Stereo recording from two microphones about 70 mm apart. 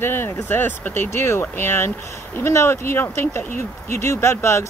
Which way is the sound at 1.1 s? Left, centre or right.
Left.